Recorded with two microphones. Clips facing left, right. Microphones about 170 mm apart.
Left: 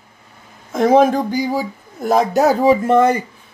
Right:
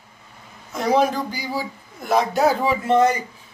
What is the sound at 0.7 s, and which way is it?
Speech, 50° left (ahead or behind).